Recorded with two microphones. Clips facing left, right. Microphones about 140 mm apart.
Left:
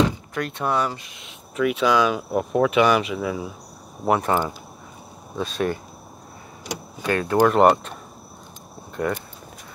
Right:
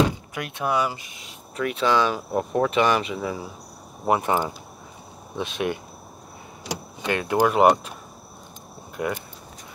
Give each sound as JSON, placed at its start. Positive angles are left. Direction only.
{"t": 0.3, "sound": "speech", "side_deg": -10}
{"t": 4.1, "sound": "speech", "side_deg": -15}
{"t": 7.0, "sound": "speech", "side_deg": -20}
{"t": 7.3, "sound": "speech", "side_deg": -10}
{"t": 8.9, "sound": "speech", "side_deg": -15}